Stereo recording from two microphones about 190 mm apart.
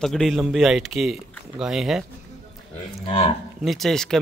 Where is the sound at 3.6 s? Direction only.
Centre (ahead or behind).